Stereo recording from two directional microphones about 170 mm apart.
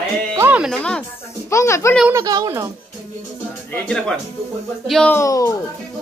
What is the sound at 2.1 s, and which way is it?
Speech, 20° right (ahead or behind).